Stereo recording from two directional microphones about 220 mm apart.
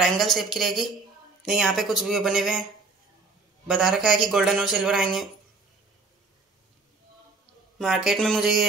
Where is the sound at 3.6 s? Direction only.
Centre (ahead or behind).